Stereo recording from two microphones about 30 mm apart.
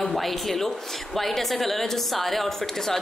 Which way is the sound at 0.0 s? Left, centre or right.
Centre.